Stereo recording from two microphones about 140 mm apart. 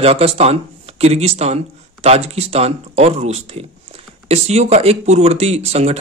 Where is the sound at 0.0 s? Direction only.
45° right (ahead or behind).